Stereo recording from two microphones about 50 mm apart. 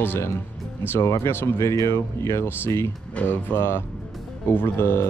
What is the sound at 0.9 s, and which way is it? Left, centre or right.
Speech, left.